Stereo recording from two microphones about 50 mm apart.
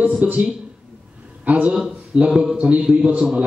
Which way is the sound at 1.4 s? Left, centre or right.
Right.